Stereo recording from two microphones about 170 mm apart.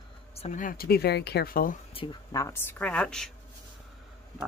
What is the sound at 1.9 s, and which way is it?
Speech, 30° left (ahead or behind).